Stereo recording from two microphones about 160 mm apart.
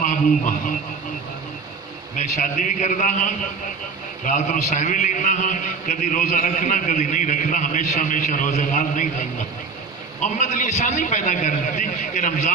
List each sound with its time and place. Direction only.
0.0 s a man's voice: 55° left (ahead or behind)
2.1 s a man's voice: 50° left (ahead or behind)